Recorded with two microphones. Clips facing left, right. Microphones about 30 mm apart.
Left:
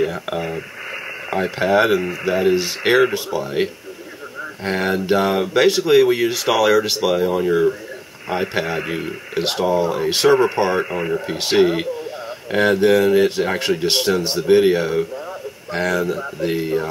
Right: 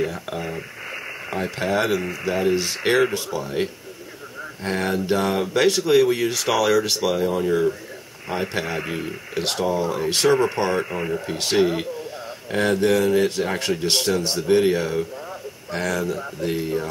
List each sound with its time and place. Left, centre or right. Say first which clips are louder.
0.0 s speech: left 5 dB; centre